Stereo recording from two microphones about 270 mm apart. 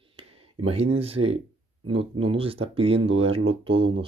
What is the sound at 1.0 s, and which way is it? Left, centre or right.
Speech, right.